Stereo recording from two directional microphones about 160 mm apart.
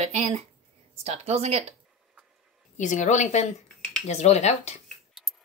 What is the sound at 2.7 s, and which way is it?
A woman's voice, 50° left (ahead or behind).